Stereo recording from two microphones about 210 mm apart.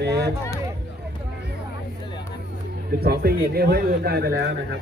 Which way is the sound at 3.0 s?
45° right (ahead or behind).